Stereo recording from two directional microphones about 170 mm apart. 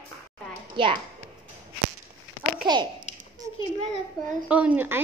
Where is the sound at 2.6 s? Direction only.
25° right (ahead or behind).